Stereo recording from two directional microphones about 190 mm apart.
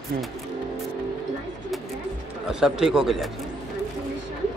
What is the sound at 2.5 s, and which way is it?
Speech, 5° right (ahead or behind).